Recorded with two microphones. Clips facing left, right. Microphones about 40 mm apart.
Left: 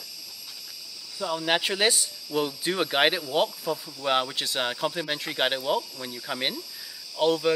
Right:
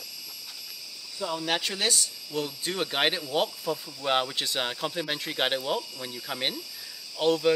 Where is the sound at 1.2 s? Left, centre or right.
Centre.